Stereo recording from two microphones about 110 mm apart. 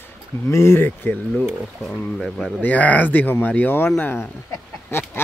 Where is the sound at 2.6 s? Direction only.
15° left (ahead or behind).